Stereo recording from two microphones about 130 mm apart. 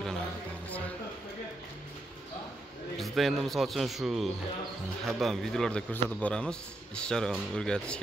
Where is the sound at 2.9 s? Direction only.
Centre (ahead or behind).